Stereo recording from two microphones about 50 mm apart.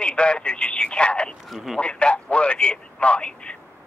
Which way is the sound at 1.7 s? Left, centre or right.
Left.